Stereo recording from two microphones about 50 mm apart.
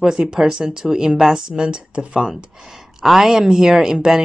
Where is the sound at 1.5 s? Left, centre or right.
Centre.